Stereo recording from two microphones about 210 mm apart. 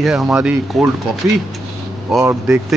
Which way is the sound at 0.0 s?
5° right (ahead or behind).